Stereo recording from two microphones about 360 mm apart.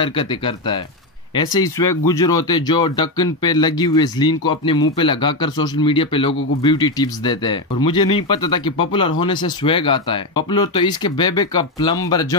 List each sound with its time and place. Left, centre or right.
0.0 s a man's voice: centre